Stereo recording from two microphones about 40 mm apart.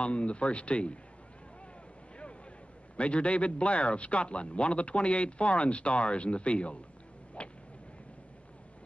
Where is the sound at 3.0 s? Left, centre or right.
Left.